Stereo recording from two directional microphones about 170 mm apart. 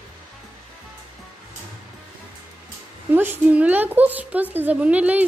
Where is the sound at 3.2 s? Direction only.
10° right (ahead or behind).